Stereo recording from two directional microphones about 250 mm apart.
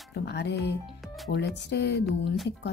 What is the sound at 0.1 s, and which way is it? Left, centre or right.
Speech, left.